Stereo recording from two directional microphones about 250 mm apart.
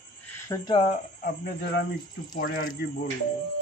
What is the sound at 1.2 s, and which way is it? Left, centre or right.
Speech, left.